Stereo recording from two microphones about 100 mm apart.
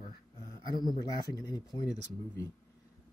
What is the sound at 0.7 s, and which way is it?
Speech, 45° left (ahead or behind).